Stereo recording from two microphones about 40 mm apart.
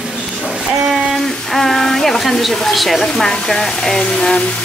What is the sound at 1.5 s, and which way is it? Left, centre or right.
Speech, centre.